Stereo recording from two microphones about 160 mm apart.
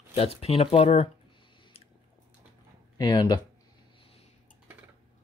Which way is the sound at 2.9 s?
25° left (ahead or behind).